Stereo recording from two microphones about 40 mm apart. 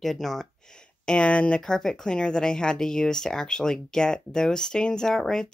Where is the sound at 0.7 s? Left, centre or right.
Left.